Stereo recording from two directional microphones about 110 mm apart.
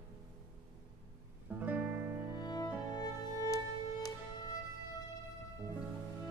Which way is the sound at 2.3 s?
40° left (ahead or behind).